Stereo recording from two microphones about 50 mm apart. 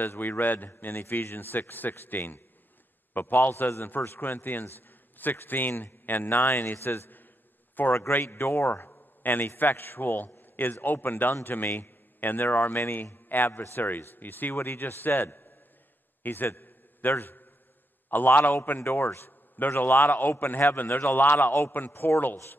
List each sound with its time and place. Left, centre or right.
0.0 s a man's voice: left
3.1 s a sound: left
3.3 s a man's voice: left
18.8 s a man's voice: left